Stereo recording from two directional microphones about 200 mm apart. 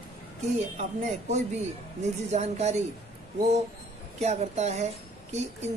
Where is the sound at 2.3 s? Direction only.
35° right (ahead or behind).